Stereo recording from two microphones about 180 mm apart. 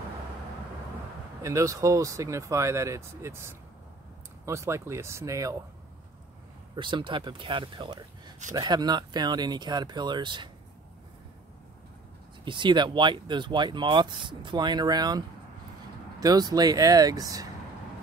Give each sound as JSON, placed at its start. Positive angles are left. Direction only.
{"t": 1.4, "sound": "speech", "side_deg": -15}
{"t": 6.7, "sound": "speech", "side_deg": -25}
{"t": 12.4, "sound": "speech", "side_deg": -25}